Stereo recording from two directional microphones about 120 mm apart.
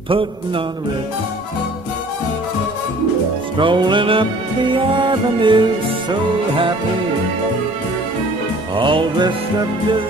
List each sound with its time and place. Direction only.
3.5 s music: 40° right (ahead or behind)
8.7 s music: 40° right (ahead or behind)